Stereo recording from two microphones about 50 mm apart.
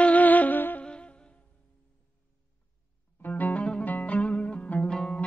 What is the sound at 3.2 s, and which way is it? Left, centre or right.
Music, left.